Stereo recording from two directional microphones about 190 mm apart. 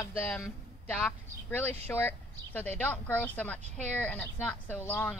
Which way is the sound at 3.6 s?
35° right (ahead or behind).